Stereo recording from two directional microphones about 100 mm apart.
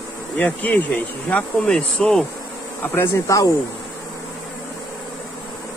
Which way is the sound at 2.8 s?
25° left (ahead or behind).